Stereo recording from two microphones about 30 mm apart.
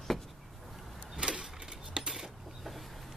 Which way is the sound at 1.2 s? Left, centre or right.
Right.